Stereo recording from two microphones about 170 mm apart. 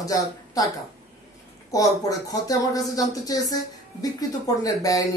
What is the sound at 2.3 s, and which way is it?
Speech, 20° left (ahead or behind).